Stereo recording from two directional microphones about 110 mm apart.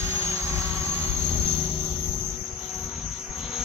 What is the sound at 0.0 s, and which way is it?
Vehicle, 25° right (ahead or behind).